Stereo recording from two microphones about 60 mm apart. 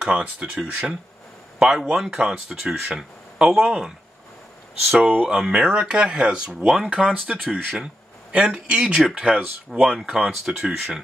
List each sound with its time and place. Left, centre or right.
0.0 s speech: centre
5.0 s speech: right